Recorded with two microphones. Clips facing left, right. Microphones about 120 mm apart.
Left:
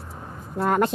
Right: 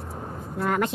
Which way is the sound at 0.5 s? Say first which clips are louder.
Left 4 dB; 35° left (ahead or behind).